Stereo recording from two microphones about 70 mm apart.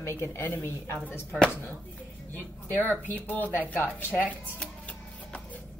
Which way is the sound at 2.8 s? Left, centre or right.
Left.